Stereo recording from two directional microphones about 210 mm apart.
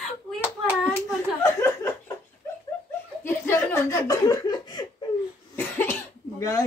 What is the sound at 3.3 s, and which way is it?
Laughter, 10° left (ahead or behind).